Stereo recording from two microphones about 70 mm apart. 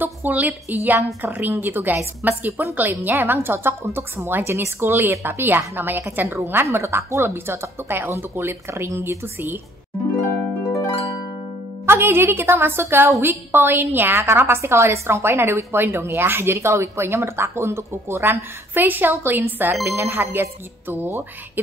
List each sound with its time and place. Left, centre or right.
0.0 s a woman's voice: right
11.8 s a woman's voice: right